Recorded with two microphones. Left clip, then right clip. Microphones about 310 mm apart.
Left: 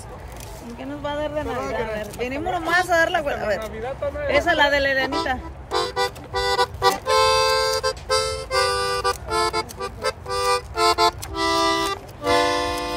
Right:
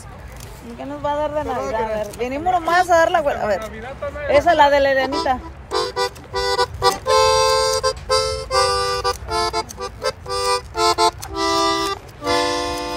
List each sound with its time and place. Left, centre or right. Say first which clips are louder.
0.7 s speech: right 5 dB; centre
1.6 s speech: right 4 dB; centre
2.1 s speech: right 6 dB; centre
3.6 s speech: left 1 dB; left
4.3 s speech: right 5 dB; centre
5.7 s music: right 2 dB; centre